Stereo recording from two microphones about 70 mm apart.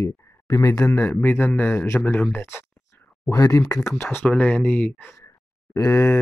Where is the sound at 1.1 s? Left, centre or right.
Left.